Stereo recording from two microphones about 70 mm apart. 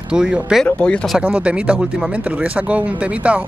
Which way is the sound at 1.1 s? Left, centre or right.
Centre.